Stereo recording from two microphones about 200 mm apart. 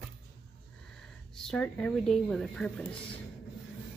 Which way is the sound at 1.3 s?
5° left (ahead or behind).